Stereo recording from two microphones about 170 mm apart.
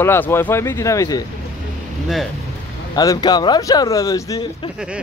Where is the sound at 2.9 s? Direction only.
25° left (ahead or behind).